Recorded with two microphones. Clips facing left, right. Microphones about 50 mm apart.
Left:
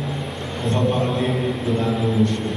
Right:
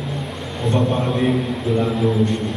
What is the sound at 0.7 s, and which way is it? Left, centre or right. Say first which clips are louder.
Speech: right 1 dB; centre.